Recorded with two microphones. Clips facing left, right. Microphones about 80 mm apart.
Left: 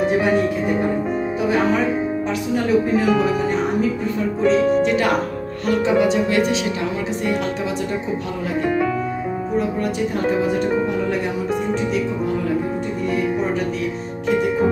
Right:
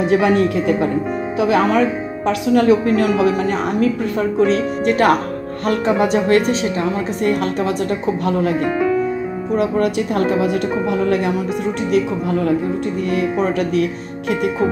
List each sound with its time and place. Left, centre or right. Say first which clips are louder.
2.2 s a woman's voice: right 7 dB; right
4.8 s speech: right 4 dB; right
8.3 s speech: right 8 dB; right
9.6 s a woman's voice: right 5 dB; right